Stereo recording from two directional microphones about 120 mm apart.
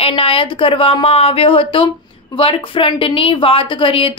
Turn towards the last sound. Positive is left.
turn(degrees=50)  # may be behind; listen again after turning